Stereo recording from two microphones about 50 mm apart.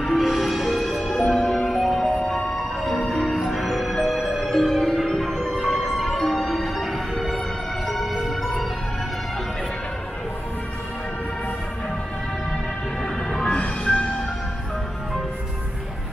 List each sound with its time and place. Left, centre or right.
0.0 s music: centre
2.0 s music: centre
13.0 s music: centre
13.5 s music: left